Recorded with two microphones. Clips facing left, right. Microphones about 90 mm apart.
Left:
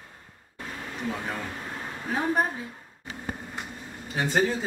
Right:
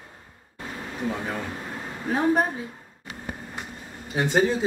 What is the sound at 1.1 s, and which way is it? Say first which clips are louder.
A man's voice: right 1 dB; 10° right (ahead or behind).